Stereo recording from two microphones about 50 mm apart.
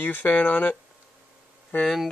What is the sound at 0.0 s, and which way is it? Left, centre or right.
Speech, left.